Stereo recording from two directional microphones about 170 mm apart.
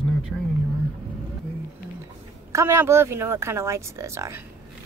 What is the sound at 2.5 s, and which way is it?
Speech, 15° right (ahead or behind).